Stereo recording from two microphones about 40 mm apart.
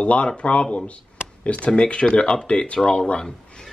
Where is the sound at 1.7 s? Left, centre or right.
Left.